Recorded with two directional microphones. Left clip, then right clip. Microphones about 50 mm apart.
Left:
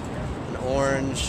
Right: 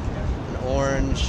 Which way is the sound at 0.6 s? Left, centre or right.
Centre.